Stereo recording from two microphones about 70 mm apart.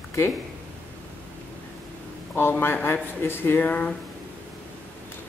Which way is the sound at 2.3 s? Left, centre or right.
Left.